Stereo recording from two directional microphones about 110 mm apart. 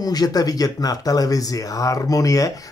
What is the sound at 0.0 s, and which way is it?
Speech, 35° left (ahead or behind).